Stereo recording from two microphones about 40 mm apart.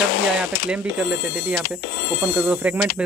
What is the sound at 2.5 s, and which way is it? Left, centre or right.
Speech, right.